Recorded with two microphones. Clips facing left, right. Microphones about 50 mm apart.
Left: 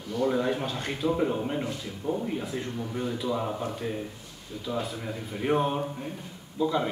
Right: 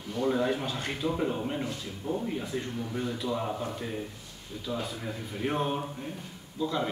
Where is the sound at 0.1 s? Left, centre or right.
Centre.